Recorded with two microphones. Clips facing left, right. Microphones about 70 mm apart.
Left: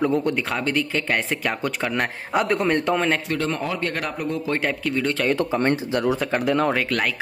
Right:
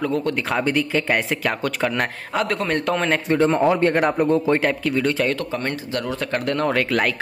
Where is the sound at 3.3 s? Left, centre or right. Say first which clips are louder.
Right 8 dB; right.